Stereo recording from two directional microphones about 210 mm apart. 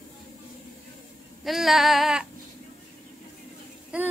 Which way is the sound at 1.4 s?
Centre (ahead or behind).